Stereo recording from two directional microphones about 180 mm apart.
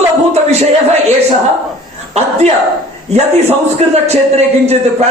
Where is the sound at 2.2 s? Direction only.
35° right (ahead or behind).